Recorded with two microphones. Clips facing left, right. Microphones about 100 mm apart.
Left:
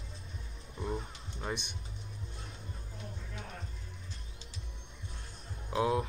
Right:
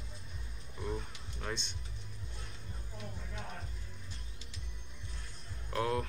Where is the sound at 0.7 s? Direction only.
20° left (ahead or behind).